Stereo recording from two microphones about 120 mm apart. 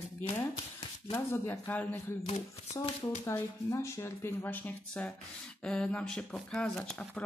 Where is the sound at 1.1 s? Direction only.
25° left (ahead or behind).